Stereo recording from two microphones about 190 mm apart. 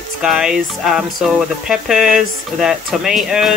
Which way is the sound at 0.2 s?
5° right (ahead or behind).